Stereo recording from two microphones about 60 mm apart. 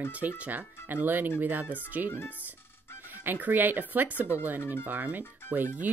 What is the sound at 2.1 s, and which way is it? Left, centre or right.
Speech, left.